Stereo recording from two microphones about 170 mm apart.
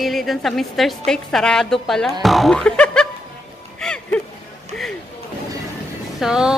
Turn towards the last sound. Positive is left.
turn(degrees=-5)  # may be behind; listen again after turning